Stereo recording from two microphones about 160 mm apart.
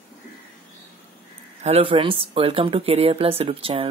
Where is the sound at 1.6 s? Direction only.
40° right (ahead or behind).